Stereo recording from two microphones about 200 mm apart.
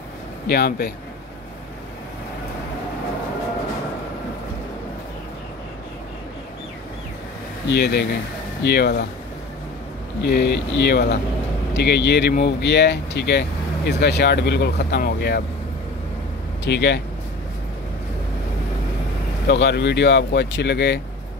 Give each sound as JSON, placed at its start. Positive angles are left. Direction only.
{"t": 0.5, "sound": "speech", "side_deg": 50}
{"t": 7.7, "sound": "speech", "side_deg": 55}
{"t": 10.2, "sound": "speech", "side_deg": 55}
{"t": 16.6, "sound": "speech", "side_deg": 60}
{"t": 19.4, "sound": "speech", "side_deg": 60}